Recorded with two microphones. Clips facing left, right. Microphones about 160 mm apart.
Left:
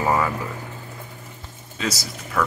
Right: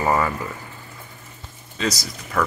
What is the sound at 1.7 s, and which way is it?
Speech, 10° left (ahead or behind).